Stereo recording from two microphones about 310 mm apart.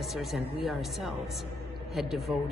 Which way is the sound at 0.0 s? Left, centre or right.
Centre.